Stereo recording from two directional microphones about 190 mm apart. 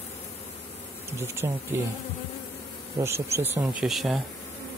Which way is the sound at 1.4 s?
20° right (ahead or behind).